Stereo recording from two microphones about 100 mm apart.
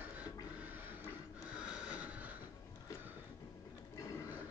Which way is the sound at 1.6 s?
10° right (ahead or behind).